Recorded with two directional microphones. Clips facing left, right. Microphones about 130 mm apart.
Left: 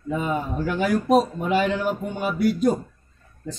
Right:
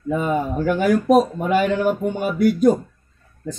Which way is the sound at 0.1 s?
50° right (ahead or behind).